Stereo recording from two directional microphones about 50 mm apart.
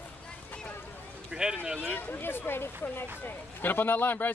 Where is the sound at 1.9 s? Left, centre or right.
Left.